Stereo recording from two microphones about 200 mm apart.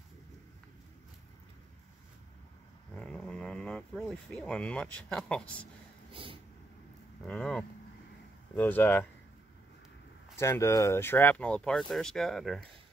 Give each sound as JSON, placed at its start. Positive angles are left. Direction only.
{"t": 2.9, "sound": "speech", "side_deg": 5}
{"t": 6.1, "sound": "vehicle", "side_deg": -25}
{"t": 7.2, "sound": "speech", "side_deg": 5}
{"t": 10.4, "sound": "speech", "side_deg": 15}